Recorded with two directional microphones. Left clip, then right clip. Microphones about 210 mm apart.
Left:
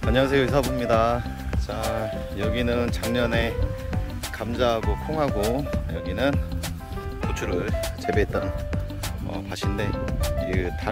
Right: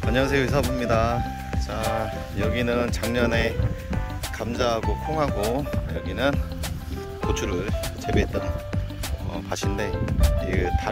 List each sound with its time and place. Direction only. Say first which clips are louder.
0.0 s speech: left 1 dB; 10° left (ahead or behind)
1.5 s speech: even; centre (ahead or behind)
8.0 s speech: left 1 dB; 20° left (ahead or behind)
9.5 s music: right 2 dB; 5° left (ahead or behind)